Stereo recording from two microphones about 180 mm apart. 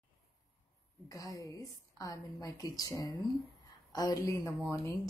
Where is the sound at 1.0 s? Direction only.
20° left (ahead or behind).